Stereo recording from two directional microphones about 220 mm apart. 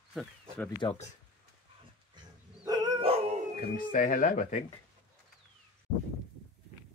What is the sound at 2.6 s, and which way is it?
Dog, 20° right (ahead or behind).